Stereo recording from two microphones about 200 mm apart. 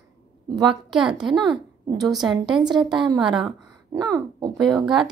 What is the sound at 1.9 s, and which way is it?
Speech, 20° right (ahead or behind).